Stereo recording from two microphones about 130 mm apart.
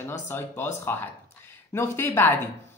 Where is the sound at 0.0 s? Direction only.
20° left (ahead or behind).